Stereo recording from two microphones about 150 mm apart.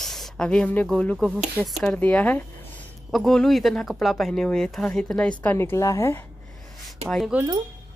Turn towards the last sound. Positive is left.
turn(degrees=0)  # may be behind; listen again after turning